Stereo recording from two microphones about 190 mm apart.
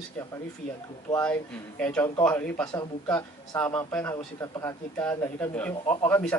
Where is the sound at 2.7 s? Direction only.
20° left (ahead or behind).